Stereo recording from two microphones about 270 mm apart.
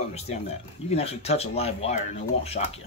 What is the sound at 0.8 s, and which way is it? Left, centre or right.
Speech, left.